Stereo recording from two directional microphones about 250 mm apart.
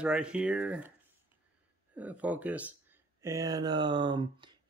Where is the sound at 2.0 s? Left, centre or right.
Centre.